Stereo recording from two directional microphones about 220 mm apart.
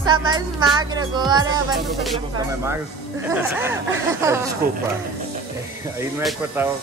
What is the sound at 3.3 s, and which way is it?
Speech, 10° right (ahead or behind).